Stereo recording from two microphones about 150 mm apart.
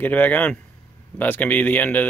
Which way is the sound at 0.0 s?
10° left (ahead or behind).